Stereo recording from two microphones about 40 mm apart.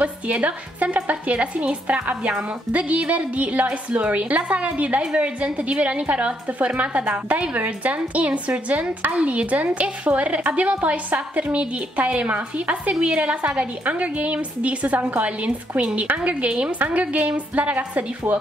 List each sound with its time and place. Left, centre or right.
0.0 s a woman's voice: right